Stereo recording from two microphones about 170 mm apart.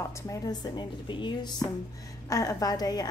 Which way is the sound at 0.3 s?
25° left (ahead or behind).